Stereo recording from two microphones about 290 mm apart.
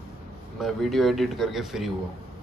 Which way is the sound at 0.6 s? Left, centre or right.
Centre.